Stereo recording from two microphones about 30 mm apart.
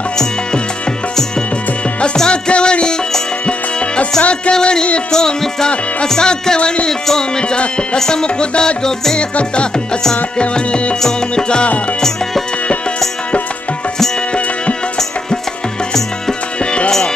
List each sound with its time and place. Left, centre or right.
2.1 s music: left
4.6 s music: left
7.3 s music: left
8.8 s music: centre
10.1 s music: left